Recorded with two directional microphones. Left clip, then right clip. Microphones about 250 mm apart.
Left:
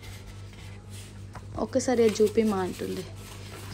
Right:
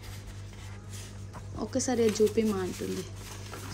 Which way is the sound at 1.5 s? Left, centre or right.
Centre.